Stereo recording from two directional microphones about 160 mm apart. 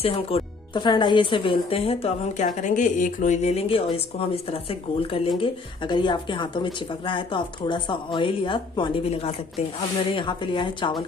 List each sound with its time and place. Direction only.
0.0 s speech: 35° left (ahead or behind)
2.4 s a woman's voice: 55° left (ahead or behind); by 11.1 s 30° left (ahead or behind)